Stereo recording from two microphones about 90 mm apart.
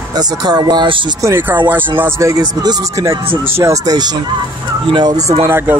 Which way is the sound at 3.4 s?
30° right (ahead or behind).